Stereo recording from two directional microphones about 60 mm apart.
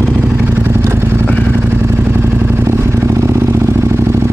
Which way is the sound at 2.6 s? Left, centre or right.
Right.